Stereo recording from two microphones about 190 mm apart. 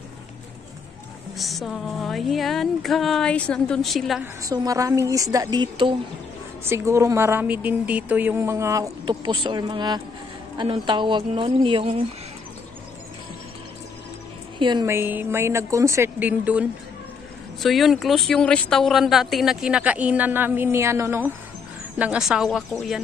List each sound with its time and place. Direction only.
1.4 s speech: centre (ahead or behind)
4.4 s a woman's voice: 15° right (ahead or behind)
14.6 s a woman's voice: 25° right (ahead or behind); by 22.9 s centre (ahead or behind)